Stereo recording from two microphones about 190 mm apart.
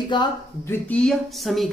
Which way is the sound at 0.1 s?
25° left (ahead or behind).